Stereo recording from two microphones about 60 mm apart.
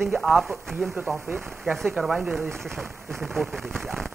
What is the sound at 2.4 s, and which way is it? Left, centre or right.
Speech, right.